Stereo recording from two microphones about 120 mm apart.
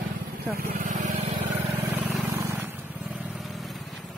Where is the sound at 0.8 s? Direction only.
90° right.